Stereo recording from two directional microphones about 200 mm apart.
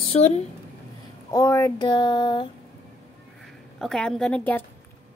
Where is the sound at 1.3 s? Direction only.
15° left (ahead or behind).